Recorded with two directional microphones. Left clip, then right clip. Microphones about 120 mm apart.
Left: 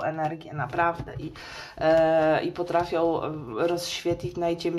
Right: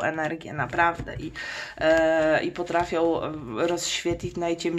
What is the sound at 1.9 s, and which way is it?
Speech, 20° right (ahead or behind).